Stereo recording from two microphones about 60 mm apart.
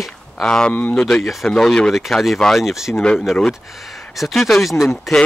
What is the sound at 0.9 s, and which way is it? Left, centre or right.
Speech, centre.